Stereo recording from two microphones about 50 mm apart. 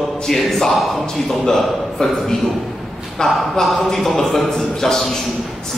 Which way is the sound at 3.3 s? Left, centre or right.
Centre.